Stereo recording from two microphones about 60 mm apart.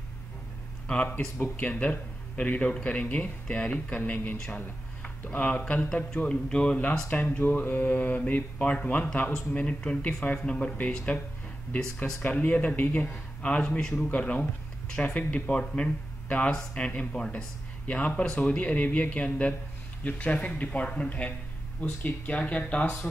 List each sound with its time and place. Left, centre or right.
0.8 s speech: left
7.0 s speech: left
12.2 s speech: left
12.8 s speech: left
13.4 s speech: centre